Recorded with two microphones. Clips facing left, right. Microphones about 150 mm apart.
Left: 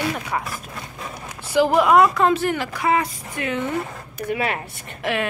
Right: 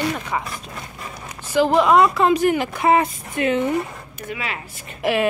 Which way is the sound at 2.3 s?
15° right (ahead or behind).